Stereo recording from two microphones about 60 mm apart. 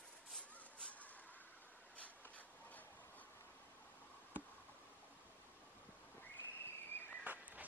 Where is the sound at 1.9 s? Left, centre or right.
Left.